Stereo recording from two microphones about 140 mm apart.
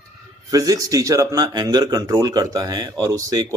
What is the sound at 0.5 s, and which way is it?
Speech, 25° right (ahead or behind).